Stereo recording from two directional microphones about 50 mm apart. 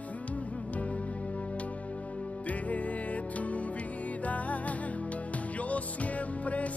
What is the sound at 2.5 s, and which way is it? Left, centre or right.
Music, left.